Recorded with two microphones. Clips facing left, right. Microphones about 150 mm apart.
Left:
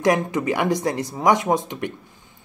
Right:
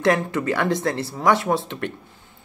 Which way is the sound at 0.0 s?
15° left (ahead or behind).